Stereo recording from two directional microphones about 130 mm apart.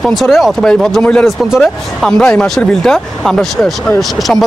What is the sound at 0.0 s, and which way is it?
Speech, centre (ahead or behind).